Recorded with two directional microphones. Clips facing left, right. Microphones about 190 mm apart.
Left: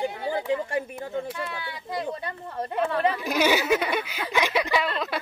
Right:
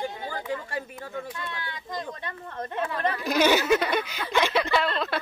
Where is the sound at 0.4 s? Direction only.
25° left (ahead or behind).